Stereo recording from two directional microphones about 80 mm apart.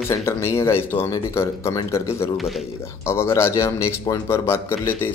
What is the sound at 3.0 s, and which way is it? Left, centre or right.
Speech, left.